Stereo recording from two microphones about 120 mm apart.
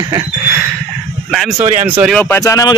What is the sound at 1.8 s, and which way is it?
Speech, 15° right (ahead or behind).